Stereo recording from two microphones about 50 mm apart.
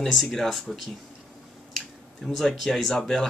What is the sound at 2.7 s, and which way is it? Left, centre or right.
Speech, centre.